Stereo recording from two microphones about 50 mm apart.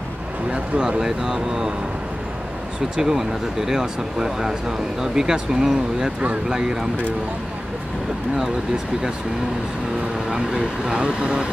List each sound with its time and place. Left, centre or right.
0.5 s speech: centre
3.0 s speech: centre
10.3 s speech: centre